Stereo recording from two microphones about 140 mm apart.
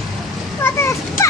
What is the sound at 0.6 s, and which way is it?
Fowl, 20° left (ahead or behind).